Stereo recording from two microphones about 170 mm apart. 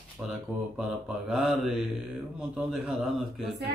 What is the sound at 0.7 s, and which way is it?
Speech, 5° right (ahead or behind).